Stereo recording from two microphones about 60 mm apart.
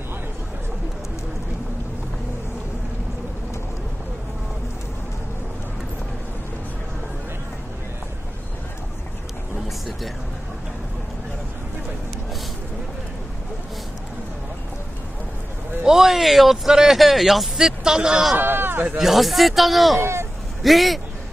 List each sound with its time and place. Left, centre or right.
15.8 s speech: centre
18.4 s speech: right
18.9 s speech: centre
20.0 s speech: right
20.6 s speech: centre